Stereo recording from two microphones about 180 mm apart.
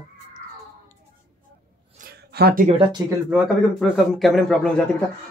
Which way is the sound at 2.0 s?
60° right (ahead or behind).